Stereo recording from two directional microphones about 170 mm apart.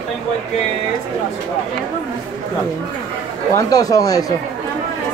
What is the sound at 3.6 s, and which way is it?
Speech, 20° left (ahead or behind).